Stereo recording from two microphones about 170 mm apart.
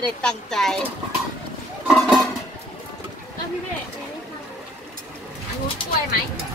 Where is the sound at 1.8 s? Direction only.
Centre (ahead or behind).